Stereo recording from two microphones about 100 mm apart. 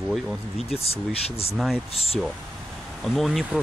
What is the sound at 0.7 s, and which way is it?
Speech, 90° left.